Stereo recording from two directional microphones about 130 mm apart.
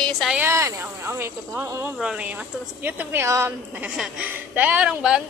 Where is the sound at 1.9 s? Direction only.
5° right (ahead or behind).